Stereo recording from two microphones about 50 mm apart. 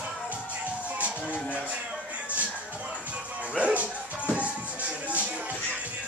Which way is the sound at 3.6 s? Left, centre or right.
Right.